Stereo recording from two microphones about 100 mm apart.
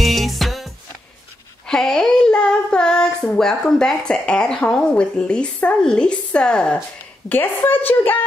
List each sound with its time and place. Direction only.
0.0 s music: centre (ahead or behind)
1.7 s child singing: 5° left (ahead or behind)
7.2 s a woman's voice: 20° left (ahead or behind)